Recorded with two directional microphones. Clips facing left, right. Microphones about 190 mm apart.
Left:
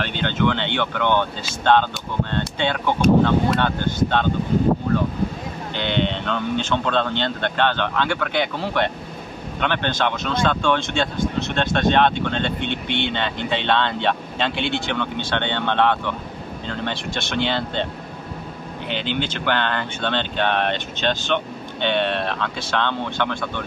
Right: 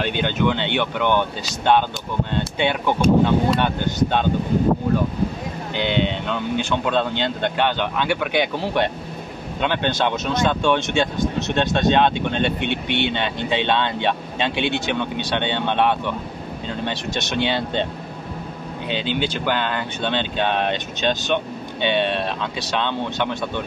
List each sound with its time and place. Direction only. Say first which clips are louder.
0.0 s speech: right 1 dB; 15° right (ahead or behind)
5.8 s speech: right 1 dB; 10° right (ahead or behind)
19.4 s speech: even; 10° right (ahead or behind)